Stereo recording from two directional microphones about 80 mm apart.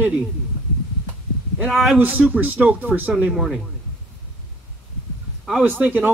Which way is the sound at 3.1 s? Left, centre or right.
Centre.